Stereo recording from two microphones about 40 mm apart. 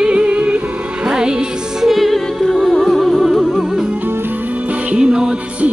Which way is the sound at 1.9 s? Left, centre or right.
Centre.